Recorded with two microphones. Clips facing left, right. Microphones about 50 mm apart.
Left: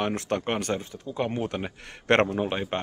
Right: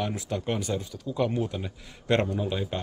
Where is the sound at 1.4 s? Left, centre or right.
Left.